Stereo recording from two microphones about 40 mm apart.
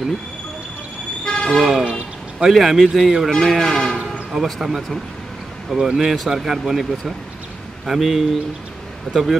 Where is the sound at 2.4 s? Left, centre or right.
Centre.